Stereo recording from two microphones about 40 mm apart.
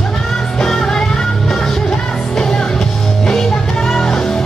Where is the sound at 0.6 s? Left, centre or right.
Centre.